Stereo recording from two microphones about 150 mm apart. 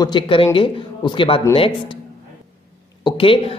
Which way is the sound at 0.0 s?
35° left (ahead or behind).